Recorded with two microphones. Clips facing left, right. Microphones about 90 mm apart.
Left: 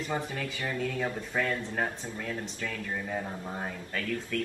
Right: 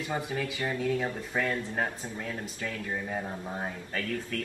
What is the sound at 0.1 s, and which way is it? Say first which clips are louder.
A man's voice: right 3 dB; 15° right (ahead or behind).